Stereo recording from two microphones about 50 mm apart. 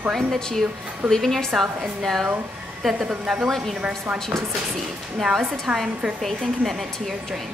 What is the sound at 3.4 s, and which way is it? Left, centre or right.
Speech, centre.